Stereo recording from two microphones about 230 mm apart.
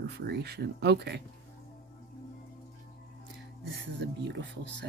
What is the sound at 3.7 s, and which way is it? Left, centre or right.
Speech, right.